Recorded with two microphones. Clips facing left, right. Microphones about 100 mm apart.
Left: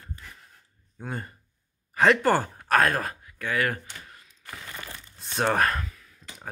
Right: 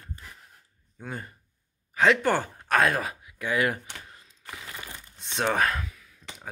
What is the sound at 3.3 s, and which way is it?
Speech, 15° right (ahead or behind).